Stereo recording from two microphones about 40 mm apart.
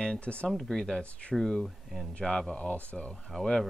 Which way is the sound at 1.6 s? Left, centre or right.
Centre.